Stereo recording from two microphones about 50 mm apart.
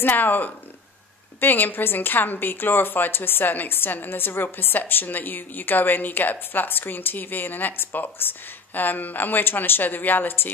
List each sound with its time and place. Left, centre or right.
0.0 s a woman's voice: left